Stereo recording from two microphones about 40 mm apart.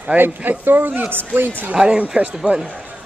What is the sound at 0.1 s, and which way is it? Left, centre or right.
Speech, right.